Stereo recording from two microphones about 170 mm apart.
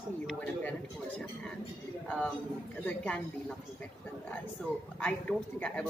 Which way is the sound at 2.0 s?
5° left (ahead or behind).